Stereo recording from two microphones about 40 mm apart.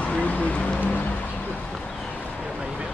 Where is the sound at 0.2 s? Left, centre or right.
Left.